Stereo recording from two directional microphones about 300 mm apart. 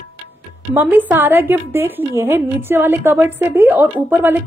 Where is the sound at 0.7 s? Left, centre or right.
Centre.